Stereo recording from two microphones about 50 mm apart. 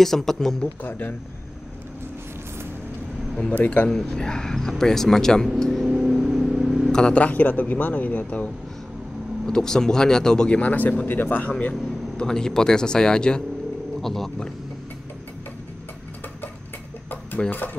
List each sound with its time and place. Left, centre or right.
0.0 s speech: centre
0.8 s speech: left
3.5 s speech: left
4.1 s speech: centre
5.9 s vehicle: centre
6.9 s a sound: centre
7.2 s speech: left
9.5 s speech: centre
10.5 s speech: left
12.2 s speech: centre
14.0 s speech: centre
17.4 s speech: centre